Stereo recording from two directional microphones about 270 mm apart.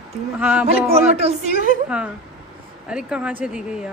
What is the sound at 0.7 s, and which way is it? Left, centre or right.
A man's voice, right.